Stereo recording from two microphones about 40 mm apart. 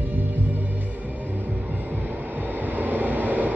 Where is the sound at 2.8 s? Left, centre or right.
Right.